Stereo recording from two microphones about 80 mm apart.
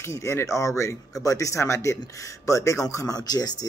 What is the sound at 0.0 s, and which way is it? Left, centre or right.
Speech, left.